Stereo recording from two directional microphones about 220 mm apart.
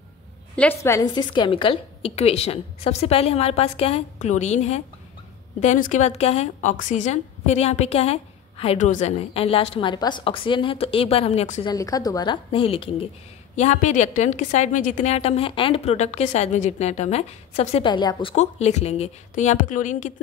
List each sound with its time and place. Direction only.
0.6 s a woman's voice: 10° left (ahead or behind); by 11.6 s 30° left (ahead or behind)
11.6 s a woman's voice: 15° left (ahead or behind); by 20.1 s 35° left (ahead or behind)